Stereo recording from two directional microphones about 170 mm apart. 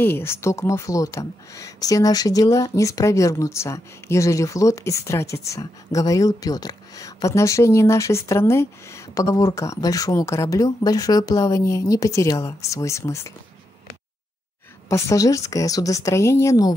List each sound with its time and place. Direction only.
0.0 s speech: 15° left (ahead or behind)
14.9 s speech: 15° left (ahead or behind)